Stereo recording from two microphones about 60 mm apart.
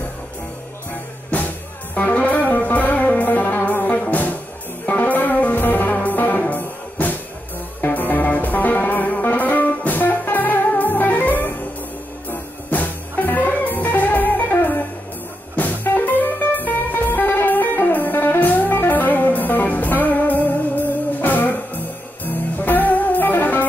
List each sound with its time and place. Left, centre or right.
2.0 s music: left